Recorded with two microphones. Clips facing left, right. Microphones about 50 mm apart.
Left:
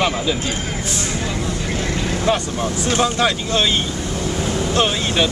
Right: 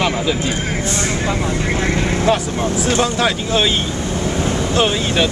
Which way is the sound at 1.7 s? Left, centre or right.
Right.